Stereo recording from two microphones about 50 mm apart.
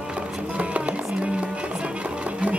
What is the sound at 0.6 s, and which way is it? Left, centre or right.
Music, right.